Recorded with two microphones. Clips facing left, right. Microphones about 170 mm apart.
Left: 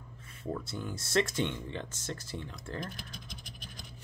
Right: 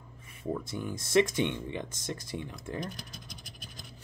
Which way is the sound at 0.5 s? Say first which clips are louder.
Right 3 dB; 15° right (ahead or behind).